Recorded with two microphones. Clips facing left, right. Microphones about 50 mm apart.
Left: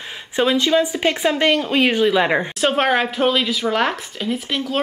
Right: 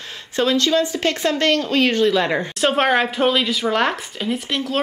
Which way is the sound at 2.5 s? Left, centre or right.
Centre.